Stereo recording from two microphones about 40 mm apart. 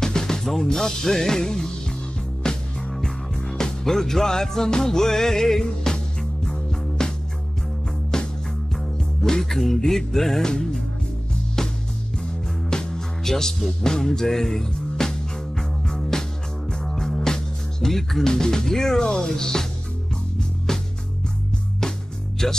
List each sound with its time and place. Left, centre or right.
0.0 s music: centre
8.1 s music: centre
22.4 s music: centre